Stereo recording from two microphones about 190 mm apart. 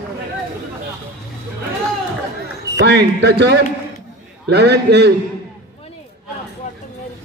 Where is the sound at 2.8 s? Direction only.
65° right (ahead or behind).